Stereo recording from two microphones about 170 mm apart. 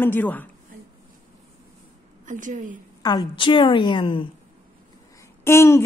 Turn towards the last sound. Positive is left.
turn(degrees=15)  # may be behind; listen again after turning